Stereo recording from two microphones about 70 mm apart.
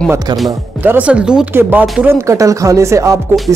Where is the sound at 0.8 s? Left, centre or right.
Right.